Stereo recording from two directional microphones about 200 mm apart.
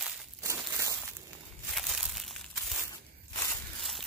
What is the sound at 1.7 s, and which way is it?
Crushing, centre (ahead or behind).